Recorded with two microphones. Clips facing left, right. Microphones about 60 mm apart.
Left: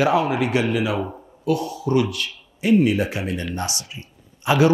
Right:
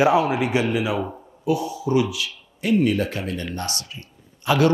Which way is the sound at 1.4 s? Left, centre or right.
Centre.